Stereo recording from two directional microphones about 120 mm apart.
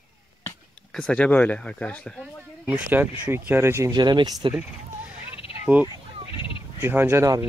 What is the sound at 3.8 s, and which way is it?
Speech, 35° right (ahead or behind).